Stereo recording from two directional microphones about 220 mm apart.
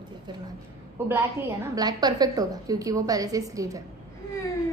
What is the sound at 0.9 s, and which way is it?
A woman's voice, 10° right (ahead or behind).